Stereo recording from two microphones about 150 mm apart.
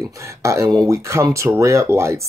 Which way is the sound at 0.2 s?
20° right (ahead or behind).